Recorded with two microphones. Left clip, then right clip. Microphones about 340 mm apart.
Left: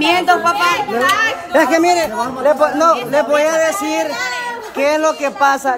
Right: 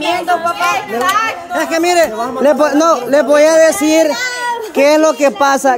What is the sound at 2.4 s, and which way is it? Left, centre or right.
Speech, right.